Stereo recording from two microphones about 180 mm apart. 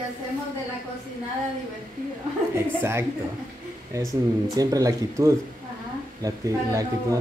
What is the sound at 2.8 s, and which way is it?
A man's voice, 15° right (ahead or behind).